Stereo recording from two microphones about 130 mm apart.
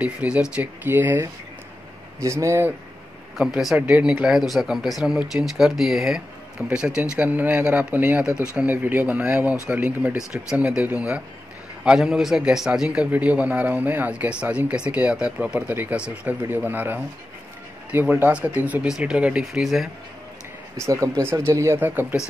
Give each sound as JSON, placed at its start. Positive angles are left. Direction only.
{"t": 0.0, "sound": "a man's voice", "side_deg": -10}
{"t": 3.3, "sound": "speech", "side_deg": -5}
{"t": 6.6, "sound": "a man's voice", "side_deg": -15}
{"t": 20.8, "sound": "speech", "side_deg": -25}